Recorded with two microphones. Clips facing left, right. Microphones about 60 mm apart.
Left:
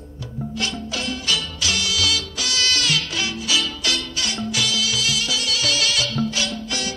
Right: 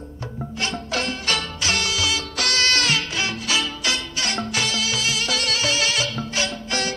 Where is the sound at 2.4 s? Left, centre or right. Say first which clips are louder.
Right 6 dB; right.